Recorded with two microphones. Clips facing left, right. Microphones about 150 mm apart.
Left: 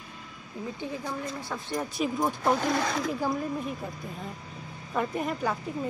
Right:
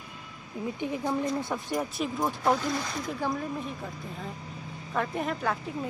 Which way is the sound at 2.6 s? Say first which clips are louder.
Left 4 dB; 80° left.